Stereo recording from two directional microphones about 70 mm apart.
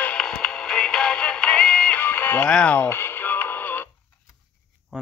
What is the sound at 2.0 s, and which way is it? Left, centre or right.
Music, left.